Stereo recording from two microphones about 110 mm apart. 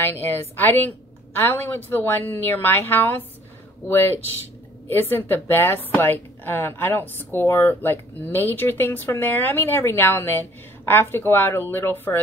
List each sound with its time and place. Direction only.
0.0 s a woman's voice: 20° left (ahead or behind)